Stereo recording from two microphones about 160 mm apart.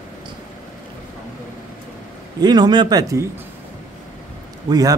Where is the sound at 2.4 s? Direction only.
25° right (ahead or behind).